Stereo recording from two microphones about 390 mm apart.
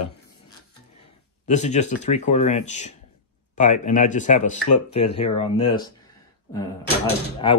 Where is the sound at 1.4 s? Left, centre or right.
Centre.